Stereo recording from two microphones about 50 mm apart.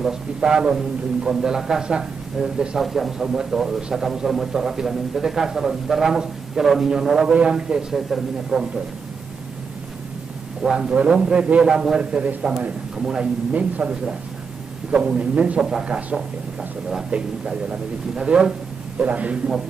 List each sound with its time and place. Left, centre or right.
0.0 s a man's voice: centre
10.8 s a man's voice: right
13.5 s a man's voice: right
15.6 s a man's voice: centre
18.9 s a man's voice: right